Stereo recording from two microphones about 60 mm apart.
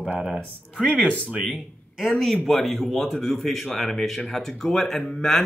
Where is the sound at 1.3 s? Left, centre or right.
Centre.